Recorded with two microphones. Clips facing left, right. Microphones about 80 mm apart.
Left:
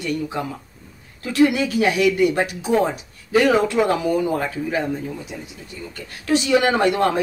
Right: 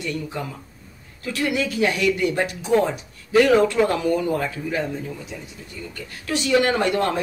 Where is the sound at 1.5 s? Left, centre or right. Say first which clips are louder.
Left 3 dB; centre.